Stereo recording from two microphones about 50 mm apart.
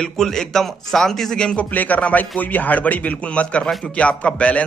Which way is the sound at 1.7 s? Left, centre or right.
Left.